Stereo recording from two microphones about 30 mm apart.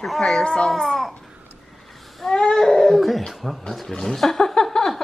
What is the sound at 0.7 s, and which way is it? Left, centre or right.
Speech, centre.